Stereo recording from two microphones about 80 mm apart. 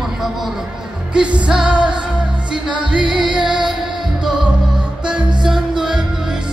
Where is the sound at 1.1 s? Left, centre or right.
Centre.